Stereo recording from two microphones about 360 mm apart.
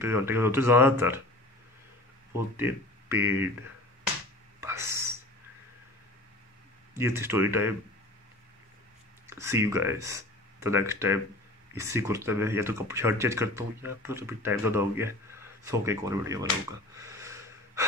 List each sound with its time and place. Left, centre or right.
0.0 s speech: centre
2.3 s speech: centre
4.6 s whispering: centre
6.9 s speech: centre
9.3 s speech: centre
16.9 s breathing: centre